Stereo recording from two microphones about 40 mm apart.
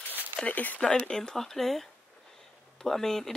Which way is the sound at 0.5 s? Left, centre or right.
Left.